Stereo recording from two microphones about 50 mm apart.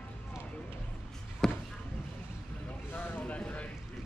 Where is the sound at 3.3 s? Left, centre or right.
Left.